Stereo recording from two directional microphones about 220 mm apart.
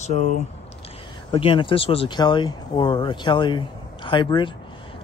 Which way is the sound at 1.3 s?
25° left (ahead or behind).